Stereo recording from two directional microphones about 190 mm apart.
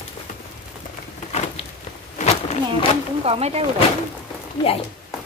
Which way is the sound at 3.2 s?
35° right (ahead or behind).